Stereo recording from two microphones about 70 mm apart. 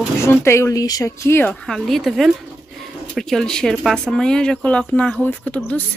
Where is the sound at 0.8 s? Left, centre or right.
Left.